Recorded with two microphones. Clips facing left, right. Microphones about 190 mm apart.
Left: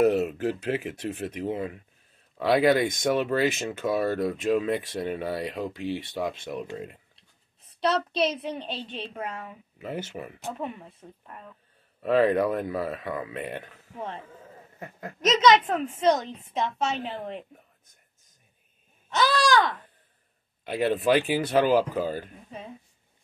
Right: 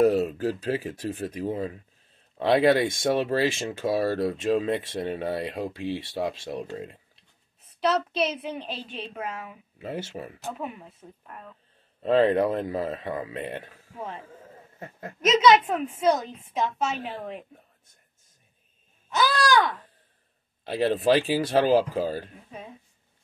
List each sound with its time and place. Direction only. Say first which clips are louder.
0.0 s speech: right 1 dB; 35° right (ahead or behind)
2.3 s speech: right 1 dB; 25° right (ahead or behind)
8.1 s a child's voice: left 1 dB; 30° left (ahead or behind)
8.5 s a woman's voice: left 1 dB; centre (ahead or behind)
9.8 s speech: even; 25° right (ahead or behind)
10.6 s a woman's voice: left 1 dB; 5° right (ahead or behind)
12.0 s speech: right 1 dB; 25° right (ahead or behind)
14.8 s speech: even; 25° right (ahead or behind)
15.2 s a woman's voice: right 1 dB; 5° right (ahead or behind)
19.0 s a sound: even; 5° right (ahead or behind)
20.6 s speech: right 1 dB; 30° right (ahead or behind)